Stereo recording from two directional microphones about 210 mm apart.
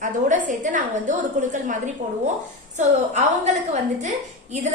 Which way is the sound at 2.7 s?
35° right (ahead or behind).